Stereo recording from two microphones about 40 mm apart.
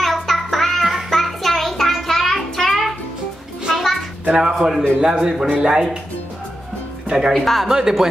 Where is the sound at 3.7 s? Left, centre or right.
Centre.